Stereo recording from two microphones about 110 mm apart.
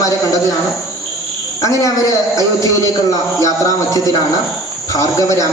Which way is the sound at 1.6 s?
30° left (ahead or behind).